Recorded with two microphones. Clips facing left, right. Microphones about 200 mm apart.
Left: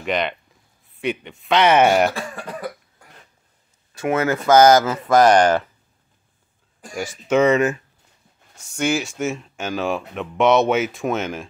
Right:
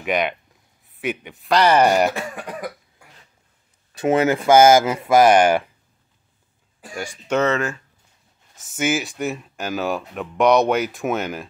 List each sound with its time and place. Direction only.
0.0 s speech: 5° right (ahead or behind)
2.1 s speech: 20° right (ahead or behind)
3.9 s speech: 20° right (ahead or behind)
4.6 s speech: 10° right (ahead or behind)
7.0 s speech: 5° left (ahead or behind)
8.5 s speech: 5° right (ahead or behind)